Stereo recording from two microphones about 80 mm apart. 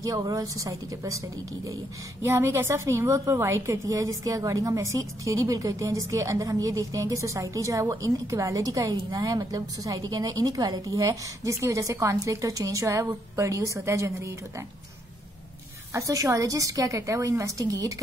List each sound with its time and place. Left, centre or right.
0.0 s a woman's voice: right
2.2 s a woman's voice: right
15.9 s a woman's voice: right